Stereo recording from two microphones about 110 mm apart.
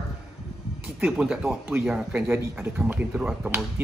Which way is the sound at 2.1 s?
15° right (ahead or behind).